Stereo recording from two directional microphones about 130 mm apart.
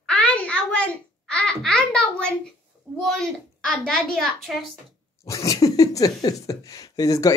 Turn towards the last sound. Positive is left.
turn(degrees=25)  # may be behind; listen again after turning